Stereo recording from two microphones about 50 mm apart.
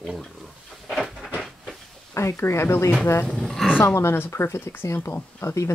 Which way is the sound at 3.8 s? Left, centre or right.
Left.